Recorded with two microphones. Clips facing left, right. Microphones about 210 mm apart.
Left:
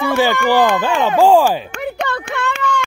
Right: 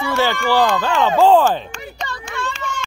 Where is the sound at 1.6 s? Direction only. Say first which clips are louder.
Left 8 dB; 60° left (ahead or behind).